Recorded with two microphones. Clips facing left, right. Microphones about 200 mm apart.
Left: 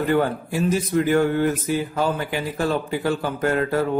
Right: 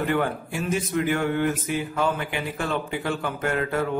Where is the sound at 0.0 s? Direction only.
35° left (ahead or behind).